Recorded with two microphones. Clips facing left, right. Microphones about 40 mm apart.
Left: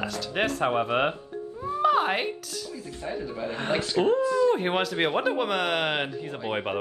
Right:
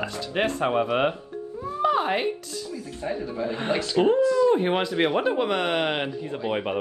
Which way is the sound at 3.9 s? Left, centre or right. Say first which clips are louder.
Right 3 dB; right.